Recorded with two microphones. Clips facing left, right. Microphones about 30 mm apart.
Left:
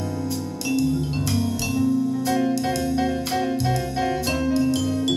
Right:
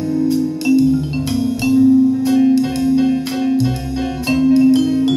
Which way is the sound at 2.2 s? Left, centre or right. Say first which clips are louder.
Right 8 dB; centre.